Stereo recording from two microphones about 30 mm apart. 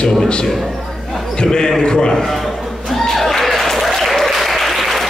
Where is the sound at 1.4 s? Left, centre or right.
Centre.